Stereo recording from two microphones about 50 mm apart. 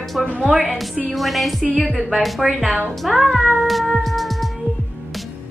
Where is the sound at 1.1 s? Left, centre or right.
Centre.